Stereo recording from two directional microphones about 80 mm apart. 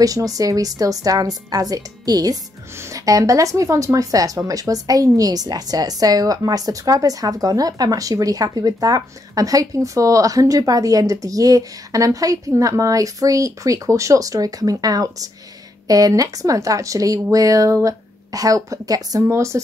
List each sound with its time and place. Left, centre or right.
0.0 s a woman's voice: right
2.8 s a woman's voice: right
19.2 s speech: right